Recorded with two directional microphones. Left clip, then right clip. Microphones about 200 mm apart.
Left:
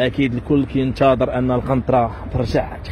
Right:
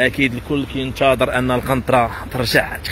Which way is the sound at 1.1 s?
5° left (ahead or behind).